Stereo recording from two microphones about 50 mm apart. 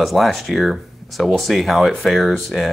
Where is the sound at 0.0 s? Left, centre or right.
Centre.